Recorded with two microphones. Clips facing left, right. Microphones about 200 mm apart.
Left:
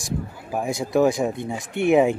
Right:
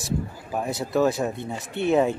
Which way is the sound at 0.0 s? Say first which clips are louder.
Right 1 dB; 10° left (ahead or behind).